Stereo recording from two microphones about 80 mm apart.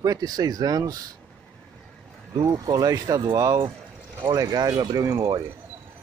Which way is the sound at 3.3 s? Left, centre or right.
Right.